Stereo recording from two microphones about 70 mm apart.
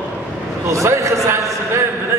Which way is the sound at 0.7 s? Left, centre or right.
Right.